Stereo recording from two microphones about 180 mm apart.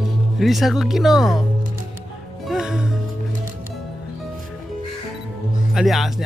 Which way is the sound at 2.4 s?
5° right (ahead or behind).